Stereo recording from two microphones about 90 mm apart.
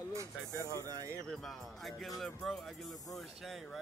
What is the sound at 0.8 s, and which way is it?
Speech, 40° right (ahead or behind).